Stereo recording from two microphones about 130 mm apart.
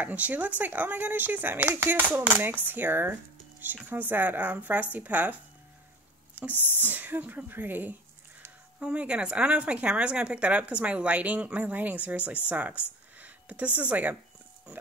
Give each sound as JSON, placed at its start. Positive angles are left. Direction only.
{"t": 0.0, "sound": "speech", "side_deg": -10}
{"t": 6.5, "sound": "speech", "side_deg": 15}
{"t": 6.9, "sound": "speech", "side_deg": -15}
{"t": 12.4, "sound": "a sound", "side_deg": -10}
{"t": 13.7, "sound": "speech", "side_deg": -10}